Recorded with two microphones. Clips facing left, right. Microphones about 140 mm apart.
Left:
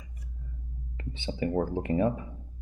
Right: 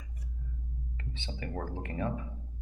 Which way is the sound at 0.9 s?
15° left (ahead or behind).